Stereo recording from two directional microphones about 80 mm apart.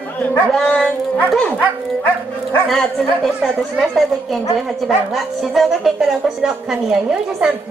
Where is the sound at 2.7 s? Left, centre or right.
Centre.